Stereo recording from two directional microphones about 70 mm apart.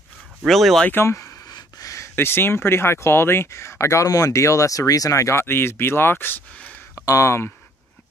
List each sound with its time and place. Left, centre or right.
0.5 s speech: centre
1.0 s speech: left
1.5 s a sound: left
2.1 s speech: left
7.0 s speech: left